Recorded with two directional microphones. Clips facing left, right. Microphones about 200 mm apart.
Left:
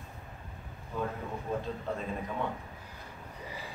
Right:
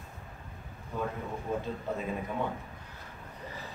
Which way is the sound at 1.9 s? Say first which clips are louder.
Right 1 dB; 5° right (ahead or behind).